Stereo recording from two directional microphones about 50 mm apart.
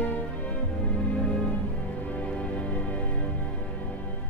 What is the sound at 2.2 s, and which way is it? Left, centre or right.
Music, left.